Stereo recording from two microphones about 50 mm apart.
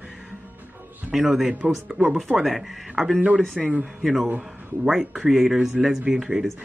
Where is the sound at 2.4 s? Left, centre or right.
Centre.